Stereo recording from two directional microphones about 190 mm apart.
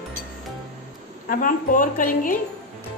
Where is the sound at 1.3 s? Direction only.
45° left (ahead or behind).